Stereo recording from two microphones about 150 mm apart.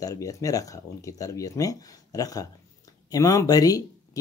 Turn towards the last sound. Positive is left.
turn(degrees=25)  # may be behind; listen again after turning